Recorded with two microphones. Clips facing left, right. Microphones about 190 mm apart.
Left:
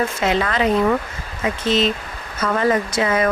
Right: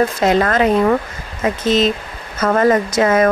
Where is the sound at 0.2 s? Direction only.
45° right (ahead or behind).